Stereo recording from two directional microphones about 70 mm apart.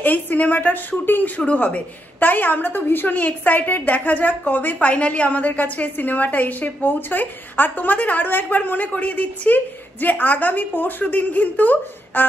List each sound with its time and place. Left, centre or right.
0.0 s speech: left